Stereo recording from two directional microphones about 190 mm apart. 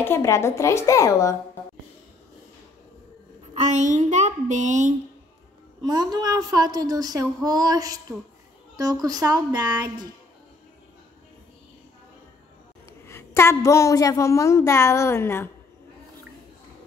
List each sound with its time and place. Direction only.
0.0 s a woman's voice: 15° left (ahead or behind)
3.5 s a sound: 35° right (ahead or behind)
5.8 s speech: 20° right (ahead or behind)
9.0 s speech: 20° right (ahead or behind)
13.0 s a woman's voice: 15° left (ahead or behind)